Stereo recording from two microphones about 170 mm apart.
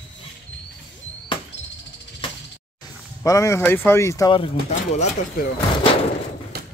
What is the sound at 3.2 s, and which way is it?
Speech, 20° left (ahead or behind).